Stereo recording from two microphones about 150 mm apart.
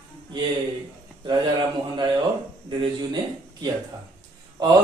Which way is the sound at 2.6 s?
30° right (ahead or behind).